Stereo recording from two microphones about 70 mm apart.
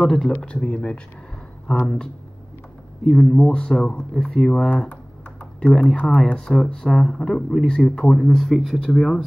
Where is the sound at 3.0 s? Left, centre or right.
Centre.